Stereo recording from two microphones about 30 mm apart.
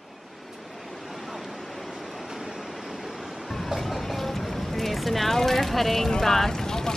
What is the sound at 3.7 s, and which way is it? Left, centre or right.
Vehicle, centre.